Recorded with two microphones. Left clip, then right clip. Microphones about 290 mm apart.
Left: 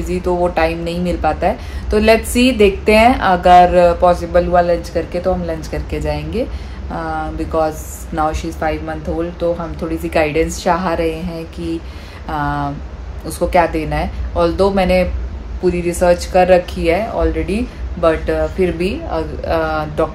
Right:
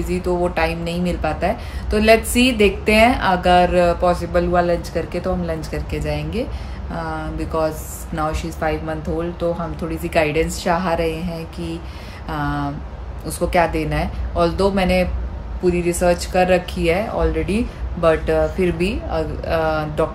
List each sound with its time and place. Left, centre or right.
0.1 s a woman's voice: centre